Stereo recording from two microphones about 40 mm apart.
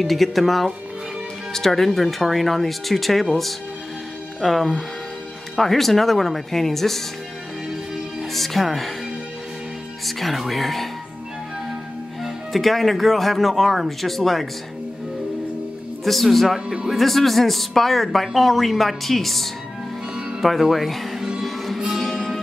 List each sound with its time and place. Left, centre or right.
0.0 s a woman's voice: centre
4.4 s a woman's voice: centre
8.2 s speech: centre
10.0 s a woman's voice: centre
12.2 s a woman's voice: centre
16.0 s a woman's voice: centre
16.5 s speech: centre
16.9 s a woman's voice: centre
20.6 s a woman's voice: centre
21.5 s music: centre